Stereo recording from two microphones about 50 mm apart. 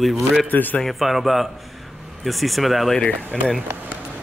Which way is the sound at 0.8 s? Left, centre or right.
Centre.